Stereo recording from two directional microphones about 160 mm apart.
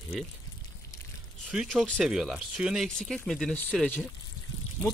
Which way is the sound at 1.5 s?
Centre (ahead or behind).